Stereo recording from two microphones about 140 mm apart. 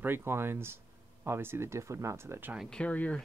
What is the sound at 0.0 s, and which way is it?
Speech, 15° right (ahead or behind).